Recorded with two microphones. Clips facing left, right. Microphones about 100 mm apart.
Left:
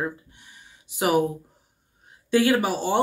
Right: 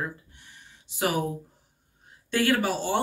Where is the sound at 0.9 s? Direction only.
15° left (ahead or behind).